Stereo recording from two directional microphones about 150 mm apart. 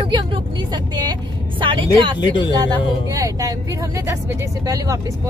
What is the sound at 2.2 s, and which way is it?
Speech, 30° left (ahead or behind).